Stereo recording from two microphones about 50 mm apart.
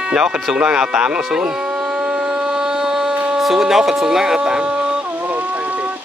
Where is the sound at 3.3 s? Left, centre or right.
Centre.